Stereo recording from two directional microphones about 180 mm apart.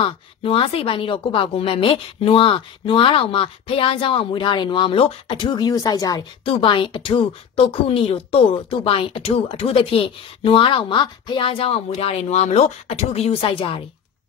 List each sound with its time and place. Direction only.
0.0 s a woman's voice: 30° left (ahead or behind)